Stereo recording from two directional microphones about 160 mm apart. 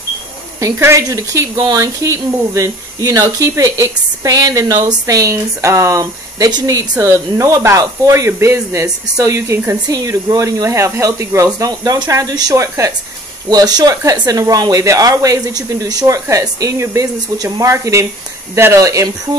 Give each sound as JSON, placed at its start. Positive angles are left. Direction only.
{"t": 0.6, "sound": "speech", "side_deg": -15}